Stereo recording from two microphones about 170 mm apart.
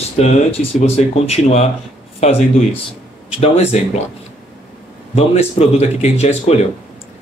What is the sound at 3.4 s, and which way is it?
Speech, 40° left (ahead or behind).